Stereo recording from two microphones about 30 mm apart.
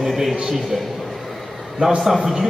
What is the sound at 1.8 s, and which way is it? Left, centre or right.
Speech, right.